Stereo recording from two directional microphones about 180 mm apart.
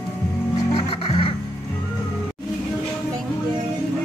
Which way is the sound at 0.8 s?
30° left (ahead or behind).